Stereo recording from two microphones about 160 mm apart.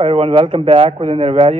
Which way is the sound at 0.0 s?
40° right (ahead or behind).